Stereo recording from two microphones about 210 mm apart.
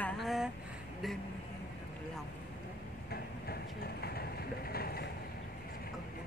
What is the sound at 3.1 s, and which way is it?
Train, 50° left (ahead or behind).